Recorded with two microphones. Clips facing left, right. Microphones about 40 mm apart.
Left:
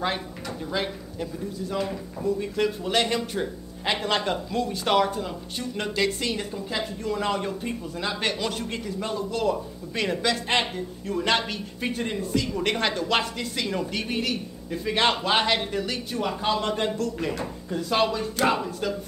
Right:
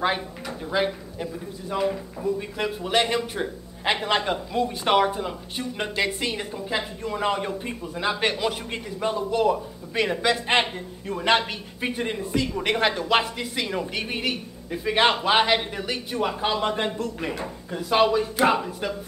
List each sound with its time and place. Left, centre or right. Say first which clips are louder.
0.7 s a man's voice: right 5 dB; centre